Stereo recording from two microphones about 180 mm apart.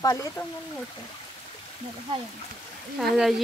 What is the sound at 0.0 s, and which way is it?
Speech, 20° left (ahead or behind).